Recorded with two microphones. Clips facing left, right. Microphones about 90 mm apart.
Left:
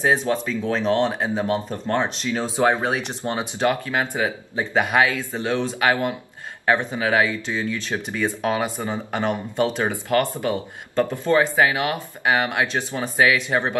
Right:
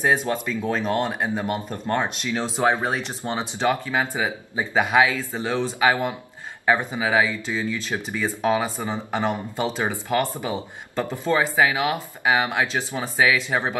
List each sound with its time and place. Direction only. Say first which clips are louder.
0.0 s speech: left 1 dB; 5° right (ahead or behind)